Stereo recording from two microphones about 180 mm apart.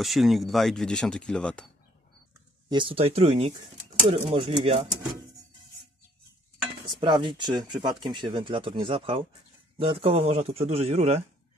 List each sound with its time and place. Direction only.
0.0 s speech: centre (ahead or behind)
2.7 s a man's voice: 30° right (ahead or behind)
7.0 s a man's voice: 25° right (ahead or behind)